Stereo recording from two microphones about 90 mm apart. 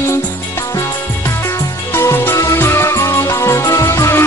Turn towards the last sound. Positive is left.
turn(degrees=30)  # may be behind; listen again after turning